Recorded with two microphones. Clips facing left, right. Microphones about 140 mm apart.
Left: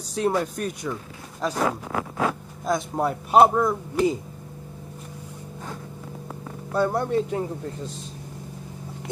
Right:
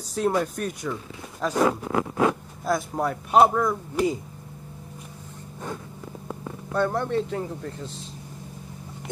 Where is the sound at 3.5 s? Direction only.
15° left (ahead or behind).